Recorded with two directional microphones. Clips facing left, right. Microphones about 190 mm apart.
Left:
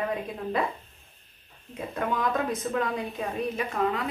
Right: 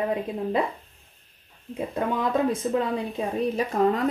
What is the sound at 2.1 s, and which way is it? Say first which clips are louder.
Speech: right 3 dB; 30° right (ahead or behind).